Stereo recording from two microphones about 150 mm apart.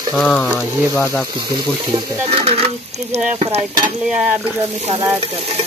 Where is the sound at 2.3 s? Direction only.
40° right (ahead or behind).